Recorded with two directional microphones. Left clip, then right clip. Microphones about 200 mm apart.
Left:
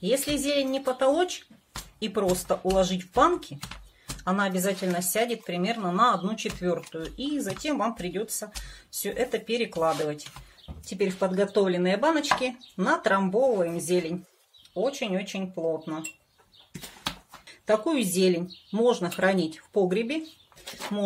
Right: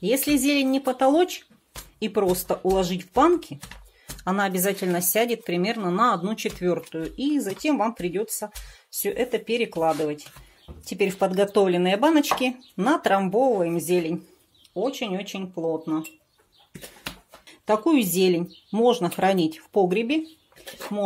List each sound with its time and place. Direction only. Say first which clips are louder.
0.0 s speech: right 4 dB; 35° right (ahead or behind)
17.6 s speech: right 3 dB; 30° right (ahead or behind)